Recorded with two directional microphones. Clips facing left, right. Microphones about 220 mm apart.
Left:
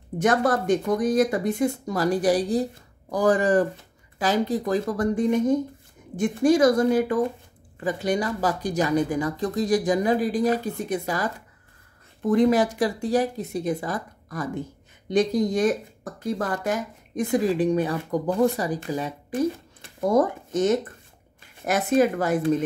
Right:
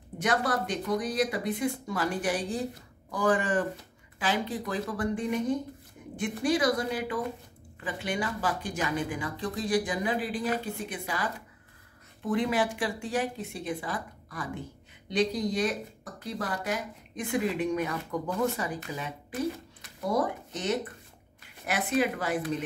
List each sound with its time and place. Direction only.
0.2 s speech: 45° left (ahead or behind)